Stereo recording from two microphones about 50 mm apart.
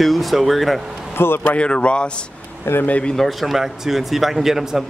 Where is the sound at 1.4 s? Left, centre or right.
Left.